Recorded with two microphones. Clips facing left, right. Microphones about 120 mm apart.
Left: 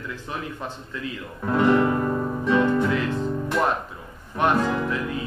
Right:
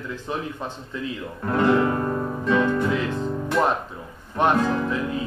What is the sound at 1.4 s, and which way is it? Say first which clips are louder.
Speech: left 1 dB; 5° left (ahead or behind).